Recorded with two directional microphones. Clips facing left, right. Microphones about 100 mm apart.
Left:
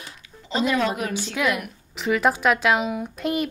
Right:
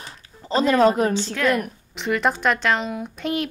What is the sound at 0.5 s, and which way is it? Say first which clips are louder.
Speech: right 6 dB; 40° right (ahead or behind).